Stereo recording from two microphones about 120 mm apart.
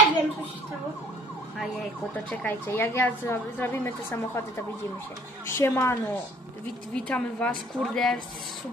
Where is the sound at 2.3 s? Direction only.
15° left (ahead or behind).